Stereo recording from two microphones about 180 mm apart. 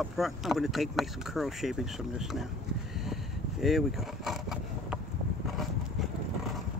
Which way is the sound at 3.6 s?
Centre (ahead or behind).